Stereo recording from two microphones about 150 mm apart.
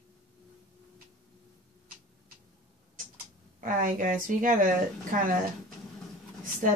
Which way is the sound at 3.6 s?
65° right (ahead or behind).